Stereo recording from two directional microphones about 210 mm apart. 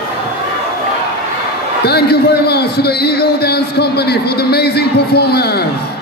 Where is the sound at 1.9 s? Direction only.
50° left (ahead or behind).